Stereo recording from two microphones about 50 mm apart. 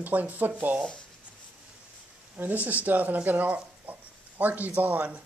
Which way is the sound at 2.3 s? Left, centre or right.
Right.